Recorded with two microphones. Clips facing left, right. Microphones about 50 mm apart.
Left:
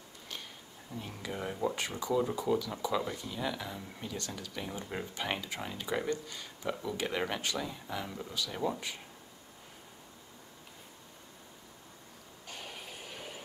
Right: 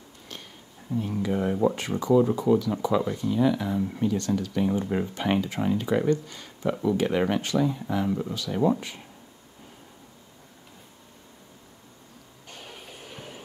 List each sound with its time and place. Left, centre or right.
0.9 s speech: centre
2.1 s speech: centre
6.0 s speech: right
6.7 s speech: centre
12.4 s music: centre